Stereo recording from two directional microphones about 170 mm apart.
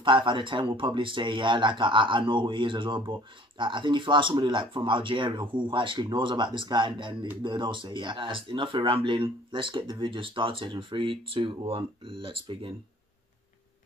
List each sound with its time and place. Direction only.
0.0 s speech: 30° right (ahead or behind)